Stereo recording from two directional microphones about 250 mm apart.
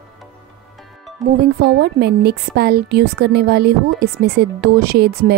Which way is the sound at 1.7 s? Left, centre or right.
Right.